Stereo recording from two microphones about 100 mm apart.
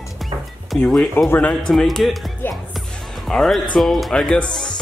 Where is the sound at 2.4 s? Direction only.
20° left (ahead or behind).